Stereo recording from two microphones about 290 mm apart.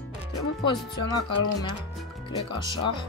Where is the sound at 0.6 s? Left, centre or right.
Centre.